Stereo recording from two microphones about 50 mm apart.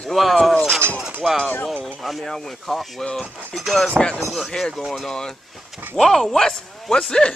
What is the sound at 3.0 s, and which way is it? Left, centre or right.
Speech, centre.